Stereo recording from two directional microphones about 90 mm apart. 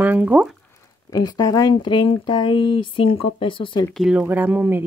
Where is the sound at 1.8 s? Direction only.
60° left (ahead or behind).